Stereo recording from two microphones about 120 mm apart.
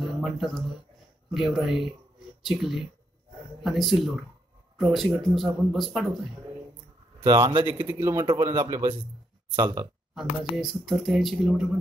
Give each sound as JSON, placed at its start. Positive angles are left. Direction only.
{"t": 0.0, "sound": "speech", "side_deg": 0}
{"t": 7.6, "sound": "a man's voice", "side_deg": -15}
{"t": 8.3, "sound": "a man's voice", "side_deg": -35}
{"t": 10.1, "sound": "speech", "side_deg": 0}